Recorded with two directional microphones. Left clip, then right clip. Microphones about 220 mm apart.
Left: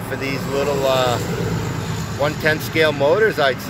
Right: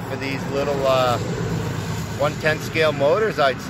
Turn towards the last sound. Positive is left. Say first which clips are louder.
# left 2 dB
turn(degrees=5)  # may be behind; listen again after turning